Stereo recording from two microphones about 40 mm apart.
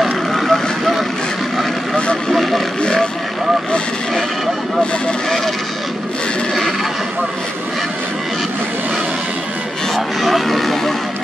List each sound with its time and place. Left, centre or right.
0.0 s vehicle: centre
2.3 s vehicle: centre
2.8 s vehicle: centre
9.9 s music: centre